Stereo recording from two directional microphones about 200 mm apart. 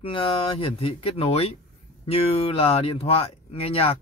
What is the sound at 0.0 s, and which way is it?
Speech, 25° left (ahead or behind).